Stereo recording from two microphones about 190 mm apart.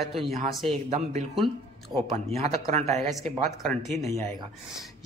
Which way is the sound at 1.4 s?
Centre (ahead or behind).